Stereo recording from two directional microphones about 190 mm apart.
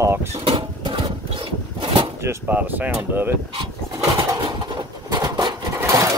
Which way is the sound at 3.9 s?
20° right (ahead or behind).